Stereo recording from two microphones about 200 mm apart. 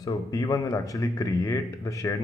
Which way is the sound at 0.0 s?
15° left (ahead or behind).